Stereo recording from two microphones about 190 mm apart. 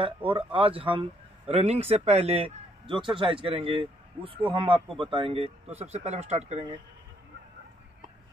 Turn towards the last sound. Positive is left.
turn(degrees=-30)  # may be behind; listen again after turning